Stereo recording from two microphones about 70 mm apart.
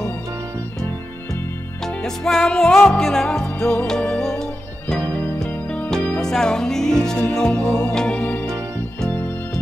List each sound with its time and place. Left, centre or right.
2.0 s music: centre
6.2 s music: centre